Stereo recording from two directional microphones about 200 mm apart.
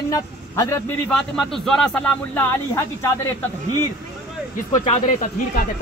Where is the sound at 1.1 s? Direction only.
Centre (ahead or behind).